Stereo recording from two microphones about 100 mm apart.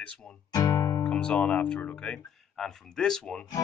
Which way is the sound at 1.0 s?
10° left (ahead or behind).